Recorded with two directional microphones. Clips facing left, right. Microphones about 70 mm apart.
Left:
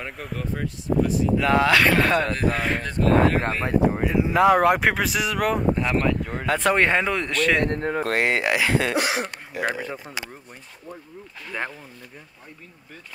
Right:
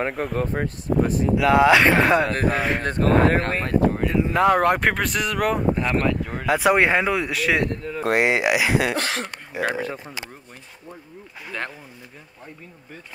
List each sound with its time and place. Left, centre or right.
0.1 s speech: right
1.3 s speech: centre
1.7 s speech: right
2.5 s speech: centre
2.8 s speech: right
3.6 s speech: centre
4.0 s speech: centre
7.6 s speech: left
8.0 s speech: centre
8.9 s speech: centre
9.7 s speech: centre